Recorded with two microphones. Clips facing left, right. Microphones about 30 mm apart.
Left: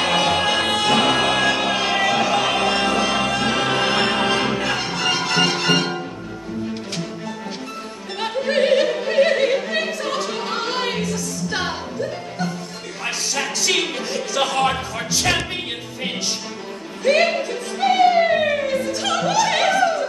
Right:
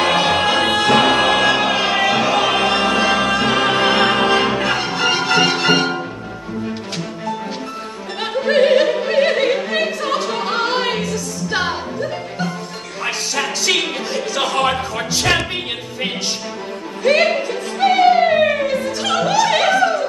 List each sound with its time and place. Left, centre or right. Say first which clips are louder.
0.0 s music: right 3 dB; centre
8.2 s opera: right 4 dB; centre
13.0 s music: right 3 dB; centre